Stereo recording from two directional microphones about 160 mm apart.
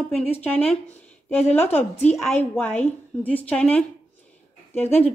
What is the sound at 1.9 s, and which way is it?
Speech, 40° left (ahead or behind).